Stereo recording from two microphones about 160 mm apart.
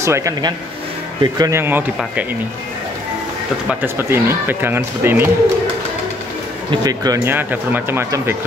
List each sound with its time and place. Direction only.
0.0 s speech: 20° right (ahead or behind)
3.6 s speech: 15° right (ahead or behind)
6.7 s speech: 25° right (ahead or behind)